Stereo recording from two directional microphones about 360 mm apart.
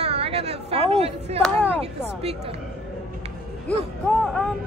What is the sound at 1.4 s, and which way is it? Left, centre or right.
Speech, centre.